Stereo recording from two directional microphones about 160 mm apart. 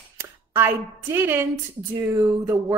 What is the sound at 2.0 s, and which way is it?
Speech, 20° right (ahead or behind).